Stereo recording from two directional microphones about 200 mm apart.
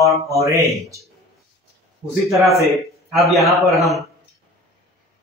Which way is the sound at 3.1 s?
Centre (ahead or behind).